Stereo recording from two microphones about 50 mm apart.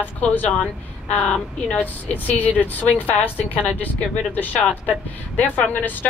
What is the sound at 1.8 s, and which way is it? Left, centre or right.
Speech, left.